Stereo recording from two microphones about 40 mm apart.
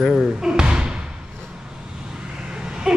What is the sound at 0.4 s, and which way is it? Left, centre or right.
Basketball bounce, centre.